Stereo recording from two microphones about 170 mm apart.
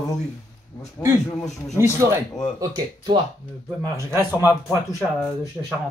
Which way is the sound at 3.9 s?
15° right (ahead or behind).